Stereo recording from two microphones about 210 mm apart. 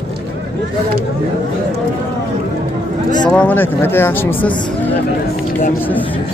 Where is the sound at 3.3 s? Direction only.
10° left (ahead or behind).